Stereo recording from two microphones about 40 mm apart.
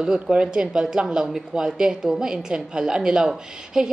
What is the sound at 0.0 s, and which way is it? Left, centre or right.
A woman's voice, centre.